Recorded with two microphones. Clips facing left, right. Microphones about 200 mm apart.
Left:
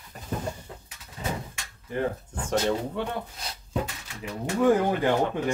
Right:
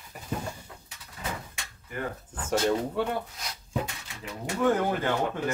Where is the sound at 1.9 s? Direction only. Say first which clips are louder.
Left 6 dB; 30° left (ahead or behind).